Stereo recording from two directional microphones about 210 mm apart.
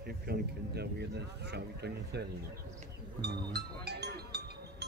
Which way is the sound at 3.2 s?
50° right (ahead or behind).